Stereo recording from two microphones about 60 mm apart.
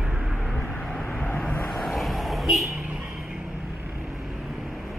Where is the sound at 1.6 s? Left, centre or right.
Centre.